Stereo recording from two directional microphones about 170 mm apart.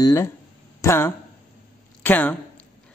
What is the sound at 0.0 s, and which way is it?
Speech, 15° left (ahead or behind).